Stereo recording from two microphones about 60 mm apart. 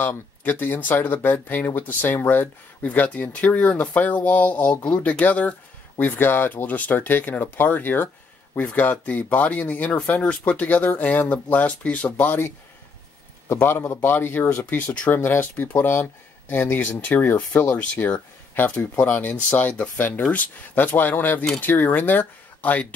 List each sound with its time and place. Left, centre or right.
0.4 s speech: left
13.5 s speech: left
16.8 s speech: left